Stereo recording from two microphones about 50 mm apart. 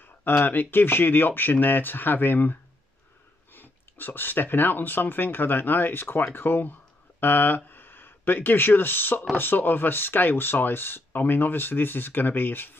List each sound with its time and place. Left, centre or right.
0.0 s speech: left
3.5 s speech: left